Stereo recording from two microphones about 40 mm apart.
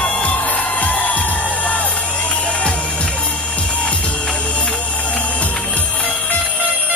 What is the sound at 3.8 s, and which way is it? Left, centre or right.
Music, left.